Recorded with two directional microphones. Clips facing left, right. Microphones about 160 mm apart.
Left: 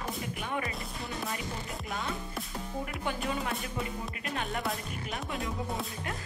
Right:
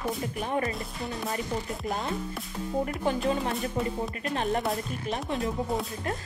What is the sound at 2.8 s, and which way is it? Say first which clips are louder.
Speech: right 7 dB; 35° right (ahead or behind).